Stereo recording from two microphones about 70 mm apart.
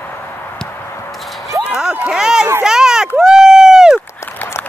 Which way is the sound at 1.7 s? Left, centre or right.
Centre.